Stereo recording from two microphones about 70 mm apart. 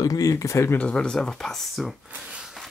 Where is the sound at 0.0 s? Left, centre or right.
Left.